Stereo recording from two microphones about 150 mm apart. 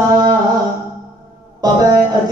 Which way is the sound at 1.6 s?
25° right (ahead or behind).